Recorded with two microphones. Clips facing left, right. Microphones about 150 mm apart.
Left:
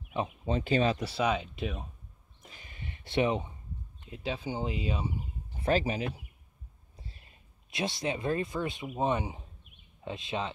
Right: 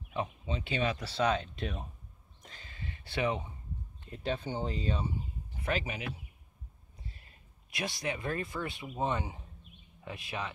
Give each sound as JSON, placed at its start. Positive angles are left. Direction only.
{"t": 0.5, "sound": "speech", "side_deg": 45}
{"t": 0.9, "sound": "speech", "side_deg": 10}
{"t": 2.4, "sound": "a sound", "side_deg": 15}
{"t": 4.1, "sound": "speech", "side_deg": 0}
{"t": 5.6, "sound": "speech", "side_deg": 35}
{"t": 7.7, "sound": "speech", "side_deg": 25}